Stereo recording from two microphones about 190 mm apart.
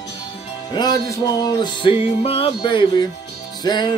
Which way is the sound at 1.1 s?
25° left (ahead or behind).